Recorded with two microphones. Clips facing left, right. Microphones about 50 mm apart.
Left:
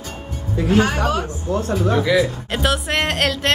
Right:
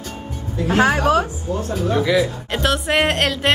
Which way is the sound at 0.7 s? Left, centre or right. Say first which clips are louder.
Right 1 dB; centre.